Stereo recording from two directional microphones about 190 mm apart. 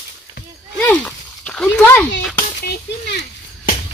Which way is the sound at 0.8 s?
5° left (ahead or behind).